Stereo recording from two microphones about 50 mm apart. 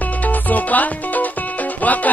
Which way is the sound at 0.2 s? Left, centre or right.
Left.